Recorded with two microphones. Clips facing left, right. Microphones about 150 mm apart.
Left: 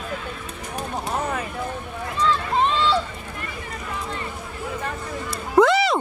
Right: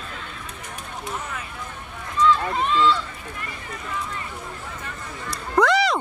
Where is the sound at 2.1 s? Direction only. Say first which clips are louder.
Right 2 dB; 35° left (ahead or behind).